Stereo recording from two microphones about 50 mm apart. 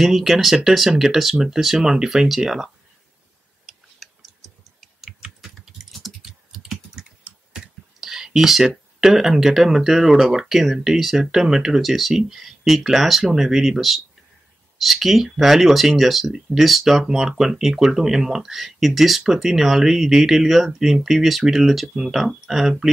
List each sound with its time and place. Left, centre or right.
0.0 s speech: centre
3.6 s tick-tock: centre
5.4 s typing: centre
7.2 s tick: centre
8.0 s speech: centre